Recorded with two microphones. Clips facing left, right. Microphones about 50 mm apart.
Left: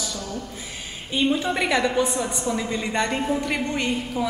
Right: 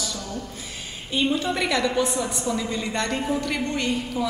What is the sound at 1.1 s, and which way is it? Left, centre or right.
A woman's voice, centre.